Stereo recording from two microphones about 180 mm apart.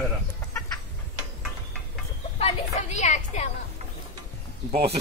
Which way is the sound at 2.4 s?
40° left (ahead or behind).